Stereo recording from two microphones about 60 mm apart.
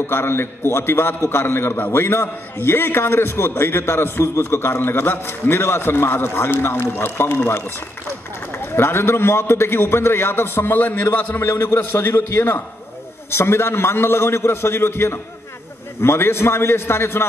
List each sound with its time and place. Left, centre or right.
0.0 s a man's voice: left
8.7 s a man's voice: left